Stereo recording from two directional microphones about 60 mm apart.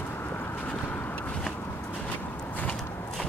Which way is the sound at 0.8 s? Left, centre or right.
Left.